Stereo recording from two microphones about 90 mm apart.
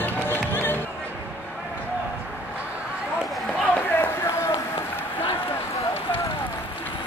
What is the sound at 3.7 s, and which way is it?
Run, 25° left (ahead or behind).